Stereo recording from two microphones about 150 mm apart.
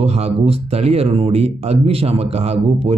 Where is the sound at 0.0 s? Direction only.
45° right (ahead or behind).